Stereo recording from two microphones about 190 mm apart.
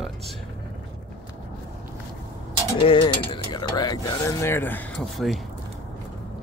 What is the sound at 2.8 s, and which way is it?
Speech, 25° left (ahead or behind).